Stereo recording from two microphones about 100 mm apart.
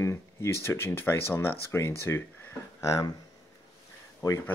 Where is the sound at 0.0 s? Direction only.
30° left (ahead or behind).